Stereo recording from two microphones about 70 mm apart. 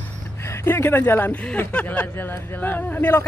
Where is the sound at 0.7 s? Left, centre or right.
Left.